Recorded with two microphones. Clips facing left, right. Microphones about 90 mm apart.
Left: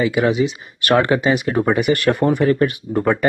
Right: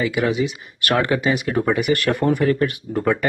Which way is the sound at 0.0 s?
25° left (ahead or behind).